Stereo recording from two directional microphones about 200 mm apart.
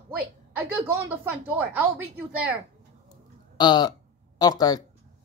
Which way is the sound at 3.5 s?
20° left (ahead or behind).